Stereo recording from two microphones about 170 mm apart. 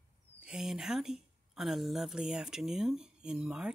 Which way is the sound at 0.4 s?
5° right (ahead or behind).